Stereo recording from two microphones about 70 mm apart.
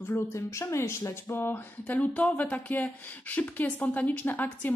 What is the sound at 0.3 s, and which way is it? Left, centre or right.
Speech, left.